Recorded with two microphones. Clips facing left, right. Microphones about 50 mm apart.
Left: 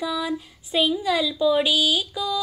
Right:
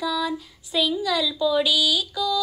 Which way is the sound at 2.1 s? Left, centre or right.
Centre.